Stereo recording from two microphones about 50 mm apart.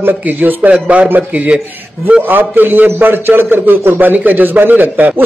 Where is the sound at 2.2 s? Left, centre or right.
Right.